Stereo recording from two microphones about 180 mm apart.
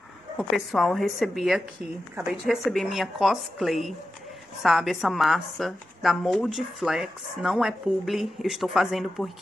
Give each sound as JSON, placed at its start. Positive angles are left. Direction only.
{"t": 0.4, "sound": "a woman's voice", "side_deg": 0}